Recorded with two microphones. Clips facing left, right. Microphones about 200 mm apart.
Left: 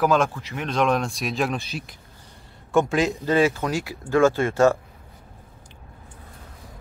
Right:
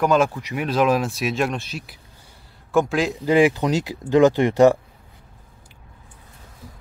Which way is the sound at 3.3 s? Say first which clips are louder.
Right 7 dB; 15° right (ahead or behind).